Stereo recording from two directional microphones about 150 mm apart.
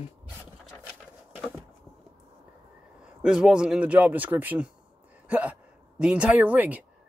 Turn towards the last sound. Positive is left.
turn(degrees=-10)  # may be behind; listen again after turning